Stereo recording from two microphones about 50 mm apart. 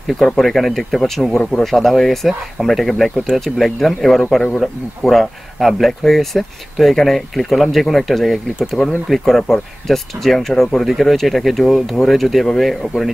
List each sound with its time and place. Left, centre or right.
0.2 s speech: centre
8.8 s speech: centre
9.1 s speech: centre